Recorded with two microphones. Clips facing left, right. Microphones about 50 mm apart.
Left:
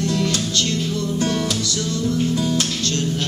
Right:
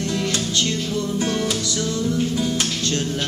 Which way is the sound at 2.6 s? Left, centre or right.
Right.